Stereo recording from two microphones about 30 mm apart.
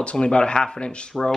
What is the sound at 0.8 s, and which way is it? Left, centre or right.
Speech, left.